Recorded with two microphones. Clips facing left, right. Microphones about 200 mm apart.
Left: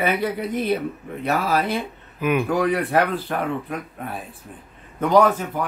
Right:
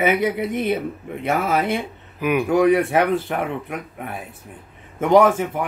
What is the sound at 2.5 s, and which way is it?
Speech, 20° right (ahead or behind).